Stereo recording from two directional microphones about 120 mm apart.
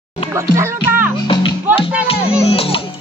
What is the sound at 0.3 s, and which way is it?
Speech, 25° right (ahead or behind).